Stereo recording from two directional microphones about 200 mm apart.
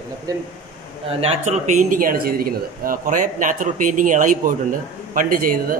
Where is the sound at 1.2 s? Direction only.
40° right (ahead or behind).